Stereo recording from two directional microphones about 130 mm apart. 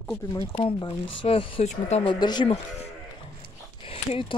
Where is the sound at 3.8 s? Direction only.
45° left (ahead or behind).